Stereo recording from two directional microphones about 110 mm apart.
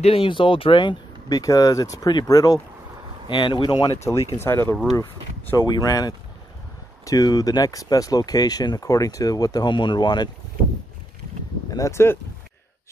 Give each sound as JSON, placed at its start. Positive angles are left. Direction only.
{"t": 0.0, "sound": "speech", "side_deg": 60}
{"t": 1.4, "sound": "speech", "side_deg": 35}
{"t": 3.3, "sound": "speech", "side_deg": 50}
{"t": 3.9, "sound": "speech", "side_deg": 25}
{"t": 5.7, "sound": "speech", "side_deg": 30}
{"t": 11.7, "sound": "speech", "side_deg": 25}